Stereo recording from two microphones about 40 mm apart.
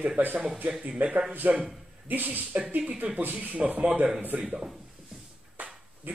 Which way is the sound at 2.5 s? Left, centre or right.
Right.